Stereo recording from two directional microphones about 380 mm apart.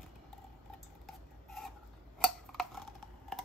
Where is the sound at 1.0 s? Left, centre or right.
Centre.